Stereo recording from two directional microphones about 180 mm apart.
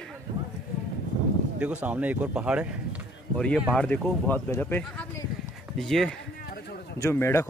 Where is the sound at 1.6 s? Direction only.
5° right (ahead or behind).